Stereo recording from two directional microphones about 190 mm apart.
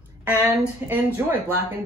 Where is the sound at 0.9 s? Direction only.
10° right (ahead or behind).